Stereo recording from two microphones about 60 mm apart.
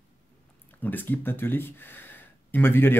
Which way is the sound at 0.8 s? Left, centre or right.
Left.